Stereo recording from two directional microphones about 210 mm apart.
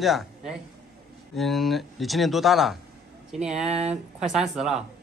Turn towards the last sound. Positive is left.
turn(degrees=-5)  # may be behind; listen again after turning